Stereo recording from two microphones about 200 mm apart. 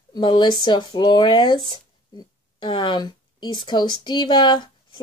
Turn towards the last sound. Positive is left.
turn(degrees=20)  # may be behind; listen again after turning